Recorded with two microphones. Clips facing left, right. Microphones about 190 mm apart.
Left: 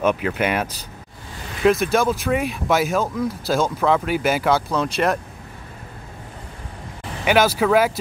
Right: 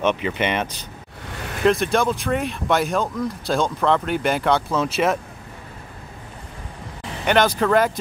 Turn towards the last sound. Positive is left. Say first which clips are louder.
# left 1 dB
turn(degrees=5)  # may be behind; listen again after turning